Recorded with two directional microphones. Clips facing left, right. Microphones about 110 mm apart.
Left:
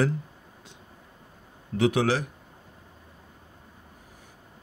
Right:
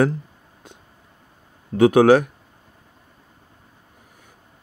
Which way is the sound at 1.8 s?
50° right (ahead or behind).